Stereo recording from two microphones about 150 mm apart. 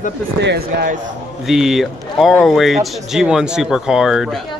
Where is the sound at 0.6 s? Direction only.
90° right.